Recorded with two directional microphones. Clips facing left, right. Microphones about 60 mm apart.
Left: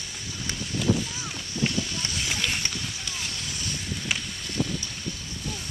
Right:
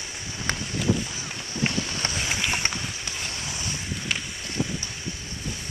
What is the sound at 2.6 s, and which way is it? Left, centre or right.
Boat, right.